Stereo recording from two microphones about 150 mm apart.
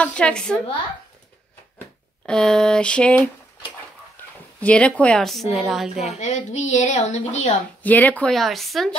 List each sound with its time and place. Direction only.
0.0 s a woman's voice: 5° left (ahead or behind)
2.2 s a woman's voice: 5° left (ahead or behind)
4.2 s dog: 15° left (ahead or behind)
4.6 s a woman's voice: 10° left (ahead or behind)
6.1 s a woman's voice: 50° left (ahead or behind)
7.8 s a woman's voice: 10° left (ahead or behind)